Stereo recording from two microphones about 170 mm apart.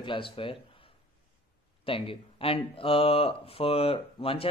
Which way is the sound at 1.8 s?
30° left (ahead or behind).